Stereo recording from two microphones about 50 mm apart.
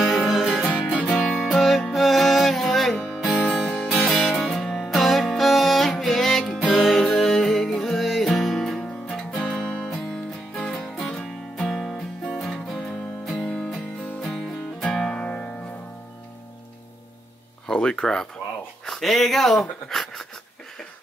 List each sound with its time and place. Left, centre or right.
0.0 s music: centre
10.8 s music: centre
14.8 s music: centre
17.6 s a sound: centre
18.9 s speech: centre
19.6 s a sound: centre